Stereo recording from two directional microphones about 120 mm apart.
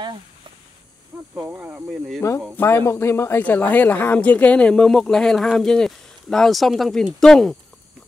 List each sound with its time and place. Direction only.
1.1 s cricket: 10° right (ahead or behind)
1.5 s speech: 15° right (ahead or behind)
2.5 s speech: 20° left (ahead or behind)